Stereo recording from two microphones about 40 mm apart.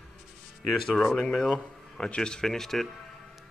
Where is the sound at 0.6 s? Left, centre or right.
Centre.